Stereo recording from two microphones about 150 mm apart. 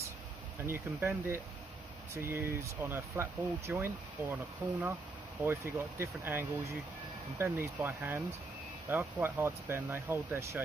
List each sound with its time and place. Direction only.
0.7 s speech: 20° right (ahead or behind)